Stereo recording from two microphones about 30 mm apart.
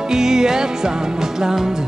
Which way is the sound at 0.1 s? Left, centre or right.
Centre.